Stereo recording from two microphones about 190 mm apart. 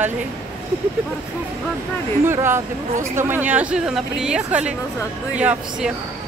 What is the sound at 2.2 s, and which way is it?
Speech, 10° right (ahead or behind).